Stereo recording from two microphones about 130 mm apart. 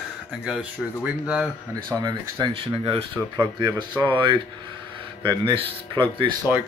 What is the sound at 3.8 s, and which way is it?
Speech, 35° right (ahead or behind).